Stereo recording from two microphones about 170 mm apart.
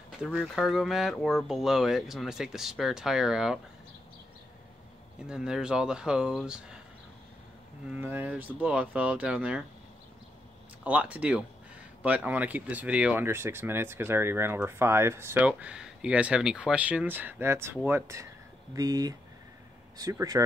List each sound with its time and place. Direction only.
0.2 s speech: 5° right (ahead or behind)
5.2 s speech: 5° right (ahead or behind)
7.9 s speech: 10° right (ahead or behind)
10.8 s speech: 10° right (ahead or behind)